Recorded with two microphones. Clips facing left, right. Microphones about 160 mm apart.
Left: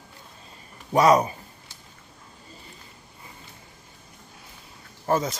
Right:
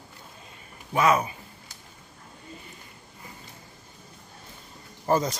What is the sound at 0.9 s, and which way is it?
Speech, 35° left (ahead or behind).